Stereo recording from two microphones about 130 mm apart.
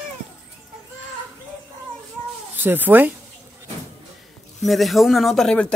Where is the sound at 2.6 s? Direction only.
15° right (ahead or behind).